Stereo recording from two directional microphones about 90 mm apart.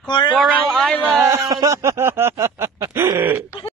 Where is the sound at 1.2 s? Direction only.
35° right (ahead or behind).